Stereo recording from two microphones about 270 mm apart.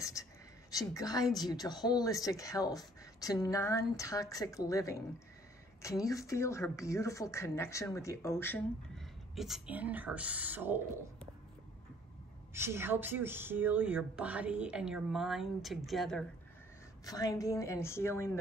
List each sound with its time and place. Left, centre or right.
0.0 s speech: centre
12.5 s speech: centre
17.0 s speech: centre